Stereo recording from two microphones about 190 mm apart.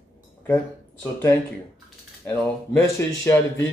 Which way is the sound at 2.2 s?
10° left (ahead or behind).